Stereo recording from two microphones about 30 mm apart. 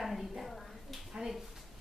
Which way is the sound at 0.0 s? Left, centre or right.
Centre.